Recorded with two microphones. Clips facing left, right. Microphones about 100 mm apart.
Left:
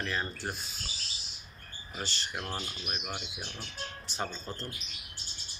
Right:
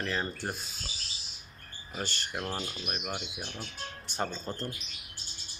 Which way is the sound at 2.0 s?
50° right (ahead or behind).